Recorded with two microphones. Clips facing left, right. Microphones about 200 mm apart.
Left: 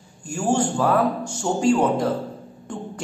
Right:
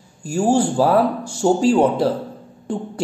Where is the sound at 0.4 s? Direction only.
35° right (ahead or behind).